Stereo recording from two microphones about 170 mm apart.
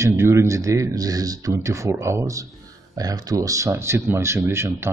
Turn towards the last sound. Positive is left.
turn(degrees=-15)  # may be behind; listen again after turning